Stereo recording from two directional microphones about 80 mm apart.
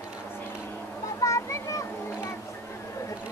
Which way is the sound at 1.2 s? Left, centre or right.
Left.